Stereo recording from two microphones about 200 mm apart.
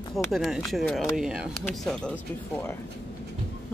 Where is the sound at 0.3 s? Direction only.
Centre (ahead or behind).